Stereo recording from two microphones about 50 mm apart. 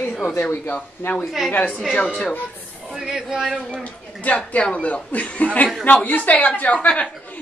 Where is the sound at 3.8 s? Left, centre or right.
Left.